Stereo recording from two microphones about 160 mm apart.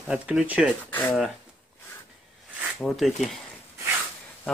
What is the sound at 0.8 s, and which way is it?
Speech, 10° left (ahead or behind).